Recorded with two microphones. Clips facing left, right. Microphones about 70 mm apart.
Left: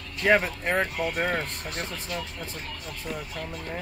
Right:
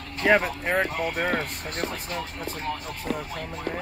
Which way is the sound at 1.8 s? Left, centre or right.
Right.